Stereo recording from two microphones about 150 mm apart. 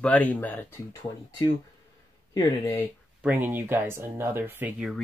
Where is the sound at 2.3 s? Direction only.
25° left (ahead or behind).